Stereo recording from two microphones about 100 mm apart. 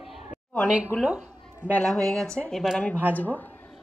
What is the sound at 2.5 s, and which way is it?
Speech, centre (ahead or behind).